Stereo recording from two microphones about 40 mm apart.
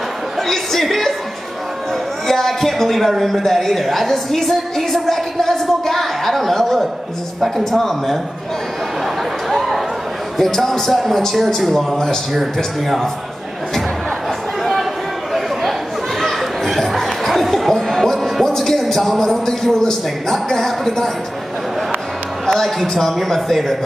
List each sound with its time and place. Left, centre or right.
0.4 s speech: centre
2.2 s a man's voice: centre
9.5 s a sound: centre
10.3 s a man's voice: centre
14.6 s a sound: centre
16.2 s a sound: centre
17.8 s music: centre
18.4 s a man's voice: centre
20.5 s a man's voice: centre
22.5 s a man's voice: centre